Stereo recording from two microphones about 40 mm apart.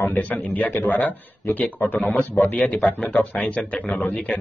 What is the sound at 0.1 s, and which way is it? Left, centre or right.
Speech, left.